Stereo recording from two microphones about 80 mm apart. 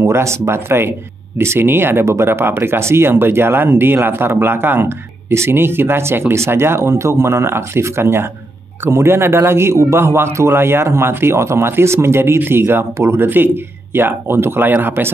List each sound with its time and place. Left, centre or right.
0.0 s a man's voice: right